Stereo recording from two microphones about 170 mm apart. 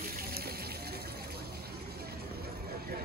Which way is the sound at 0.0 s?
60° right (ahead or behind).